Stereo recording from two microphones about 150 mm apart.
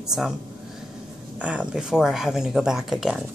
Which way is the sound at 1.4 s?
10° right (ahead or behind).